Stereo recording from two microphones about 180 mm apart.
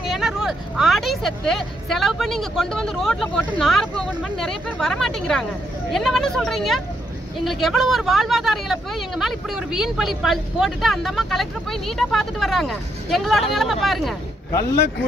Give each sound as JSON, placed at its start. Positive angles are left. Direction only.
{"t": 0.0, "sound": "speech", "side_deg": 0}
{"t": 14.5, "sound": "speech", "side_deg": 15}